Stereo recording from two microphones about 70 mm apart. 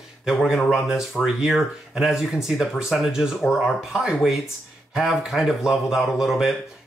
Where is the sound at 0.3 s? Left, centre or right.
Centre.